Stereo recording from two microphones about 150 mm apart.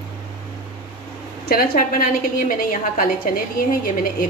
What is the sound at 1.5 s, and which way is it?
A woman's voice, 90° left.